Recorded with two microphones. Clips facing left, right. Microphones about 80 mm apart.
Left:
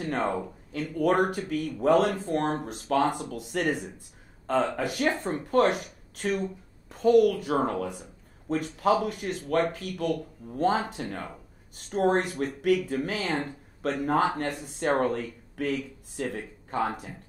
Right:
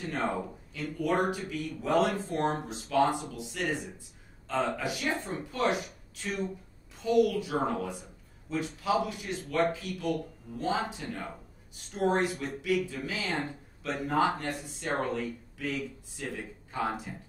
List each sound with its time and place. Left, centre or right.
0.0 s a woman's voice: left